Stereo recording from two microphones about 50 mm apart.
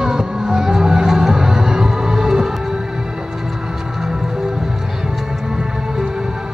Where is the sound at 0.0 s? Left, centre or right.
Centre.